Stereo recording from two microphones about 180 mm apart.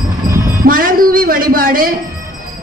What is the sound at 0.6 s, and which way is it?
Music, 50° right (ahead or behind).